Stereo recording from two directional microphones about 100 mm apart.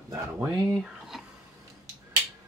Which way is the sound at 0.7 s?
Centre (ahead or behind).